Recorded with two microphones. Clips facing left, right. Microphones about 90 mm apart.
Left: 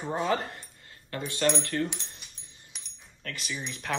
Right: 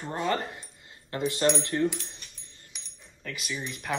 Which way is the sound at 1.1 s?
25° right (ahead or behind).